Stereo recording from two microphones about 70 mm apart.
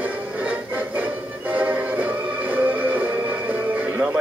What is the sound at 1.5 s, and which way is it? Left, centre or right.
Music, right.